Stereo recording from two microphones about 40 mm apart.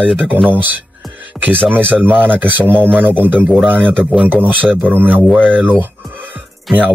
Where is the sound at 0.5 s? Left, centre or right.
Right.